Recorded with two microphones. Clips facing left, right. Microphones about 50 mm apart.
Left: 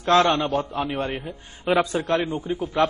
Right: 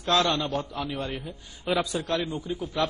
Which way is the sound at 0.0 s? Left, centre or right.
Left.